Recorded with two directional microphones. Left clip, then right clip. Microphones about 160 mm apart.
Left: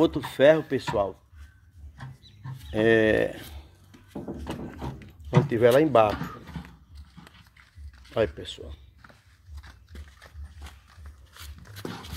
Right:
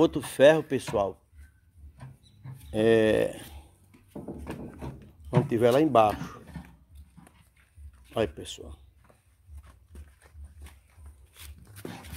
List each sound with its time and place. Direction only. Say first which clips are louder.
0.0 s speech: even; 30° right (ahead or behind)
2.7 s speech: left 1 dB; 20° right (ahead or behind)
4.9 s a sound: left 2 dB; centre (ahead or behind)
5.5 s speech: left 3 dB; 20° right (ahead or behind)
8.1 s speech: left 3 dB; 20° right (ahead or behind)
11.3 s a sound: left 5 dB; 5° right (ahead or behind)